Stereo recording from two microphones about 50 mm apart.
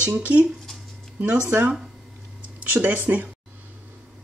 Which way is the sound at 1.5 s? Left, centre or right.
Right.